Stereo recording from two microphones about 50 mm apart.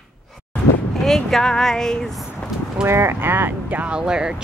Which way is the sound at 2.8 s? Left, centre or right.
Right.